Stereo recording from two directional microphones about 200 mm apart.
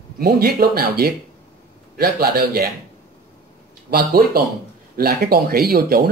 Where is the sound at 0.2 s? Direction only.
50° right (ahead or behind).